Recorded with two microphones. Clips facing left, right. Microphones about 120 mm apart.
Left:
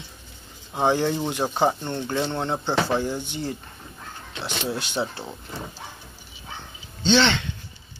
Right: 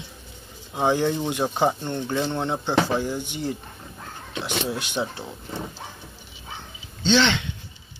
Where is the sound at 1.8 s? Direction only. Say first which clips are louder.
Right 1 dB; 5° right (ahead or behind).